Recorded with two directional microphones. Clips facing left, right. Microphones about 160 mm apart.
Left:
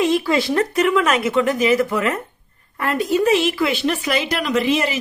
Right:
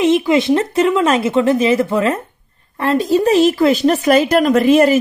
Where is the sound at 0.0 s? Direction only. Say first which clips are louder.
Right 5 dB; 20° right (ahead or behind).